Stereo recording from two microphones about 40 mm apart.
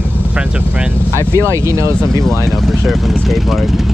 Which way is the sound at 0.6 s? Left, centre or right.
Right.